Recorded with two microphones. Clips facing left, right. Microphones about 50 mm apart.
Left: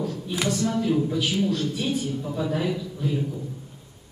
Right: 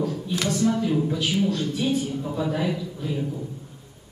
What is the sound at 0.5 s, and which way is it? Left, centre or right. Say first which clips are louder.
A woman's voice: right 1 dB; centre.